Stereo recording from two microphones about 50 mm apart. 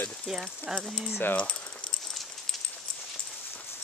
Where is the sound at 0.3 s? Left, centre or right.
Centre.